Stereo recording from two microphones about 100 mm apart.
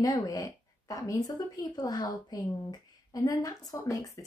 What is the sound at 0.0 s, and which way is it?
A woman's voice, 35° left (ahead or behind).